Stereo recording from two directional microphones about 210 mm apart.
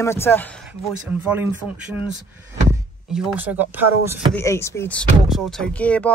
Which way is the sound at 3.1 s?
5° right (ahead or behind).